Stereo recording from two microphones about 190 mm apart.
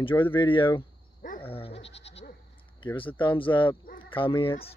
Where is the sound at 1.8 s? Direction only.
65° left (ahead or behind).